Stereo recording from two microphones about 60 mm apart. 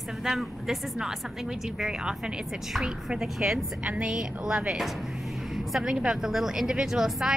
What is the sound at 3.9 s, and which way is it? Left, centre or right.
Speech, centre.